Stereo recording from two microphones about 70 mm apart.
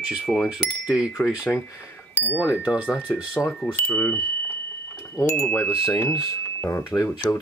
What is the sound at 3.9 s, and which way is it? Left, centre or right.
Speech, left.